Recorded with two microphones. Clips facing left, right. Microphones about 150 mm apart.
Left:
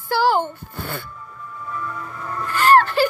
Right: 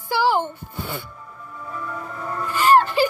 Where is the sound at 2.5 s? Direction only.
5° right (ahead or behind).